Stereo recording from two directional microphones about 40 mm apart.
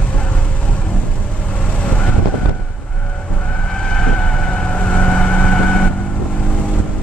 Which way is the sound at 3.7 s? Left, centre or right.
Centre.